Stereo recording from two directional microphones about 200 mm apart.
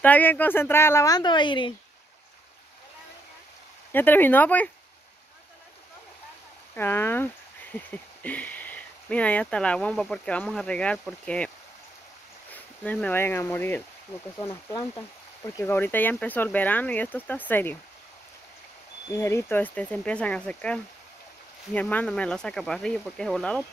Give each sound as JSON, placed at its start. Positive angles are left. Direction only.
{"t": 0.0, "sound": "speech", "side_deg": 10}
{"t": 3.9, "sound": "speech", "side_deg": 10}
{"t": 6.7, "sound": "speech", "side_deg": 10}
{"t": 12.5, "sound": "speech", "side_deg": 10}
{"t": 19.1, "sound": "speech", "side_deg": 15}